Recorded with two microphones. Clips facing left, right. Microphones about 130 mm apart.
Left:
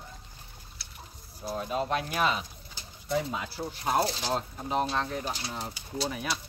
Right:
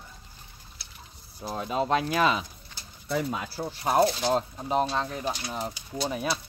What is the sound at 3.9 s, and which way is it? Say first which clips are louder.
Speech: right 5 dB; 25° right (ahead or behind).